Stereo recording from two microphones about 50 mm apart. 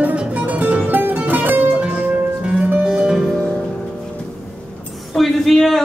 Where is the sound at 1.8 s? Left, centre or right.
Right.